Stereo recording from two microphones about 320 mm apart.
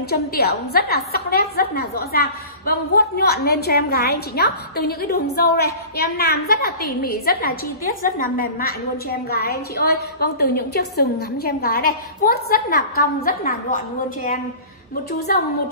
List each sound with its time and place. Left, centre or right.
0.1 s a woman's voice: left
15.1 s a woman's voice: left